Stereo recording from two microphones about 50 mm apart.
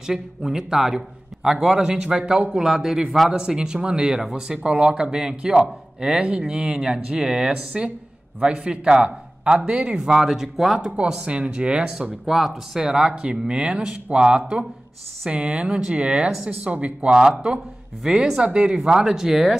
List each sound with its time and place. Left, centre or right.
0.0 s speech: centre
2.5 s speech: centre
16.4 s speech: right; by 19.5 s centre